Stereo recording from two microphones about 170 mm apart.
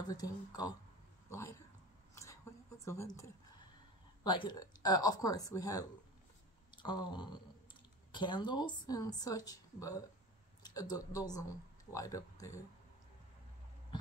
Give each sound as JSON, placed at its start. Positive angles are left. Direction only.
{"t": 0.1, "sound": "speech", "side_deg": 20}
{"t": 2.8, "sound": "a woman's voice", "side_deg": 15}